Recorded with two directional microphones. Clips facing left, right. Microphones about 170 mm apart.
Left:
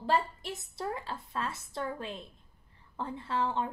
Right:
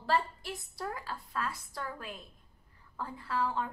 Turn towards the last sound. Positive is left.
turn(degrees=25)  # may be behind; listen again after turning